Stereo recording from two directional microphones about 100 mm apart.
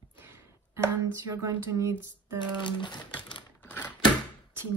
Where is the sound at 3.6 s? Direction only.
20° left (ahead or behind).